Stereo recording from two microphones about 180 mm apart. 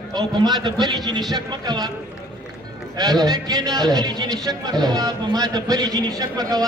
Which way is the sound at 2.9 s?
20° right (ahead or behind).